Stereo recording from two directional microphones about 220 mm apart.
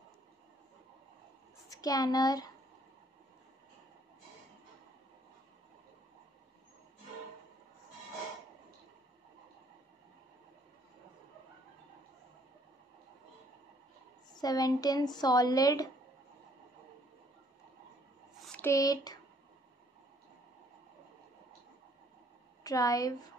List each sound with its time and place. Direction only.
1.7 s speech: 15° left (ahead or behind)
14.3 s speech: 15° left (ahead or behind)
18.4 s speech: 5° left (ahead or behind)
22.6 s speech: 15° left (ahead or behind)